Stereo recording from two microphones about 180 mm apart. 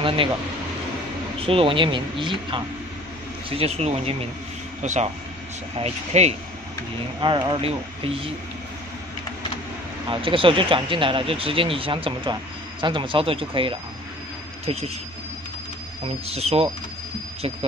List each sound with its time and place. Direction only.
0.0 s speech: 30° right (ahead or behind)
1.4 s speech: 30° right (ahead or behind)
7.2 s speech: 25° right (ahead or behind)
10.0 s speech: 30° right (ahead or behind)
16.3 s speech: 35° right (ahead or behind)